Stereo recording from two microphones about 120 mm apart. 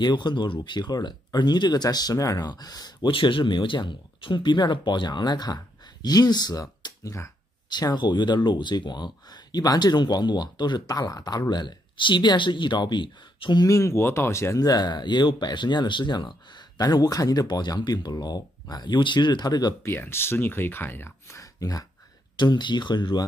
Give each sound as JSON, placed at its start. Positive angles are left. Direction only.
{"t": 0.0, "sound": "speech", "side_deg": 40}
{"t": 3.1, "sound": "speech", "side_deg": 45}
{"t": 13.7, "sound": "speech", "side_deg": 25}
{"t": 19.8, "sound": "speech", "side_deg": 20}
{"t": 22.4, "sound": "speech", "side_deg": 40}